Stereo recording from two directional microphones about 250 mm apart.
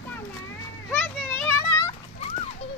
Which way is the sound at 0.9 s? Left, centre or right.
Centre.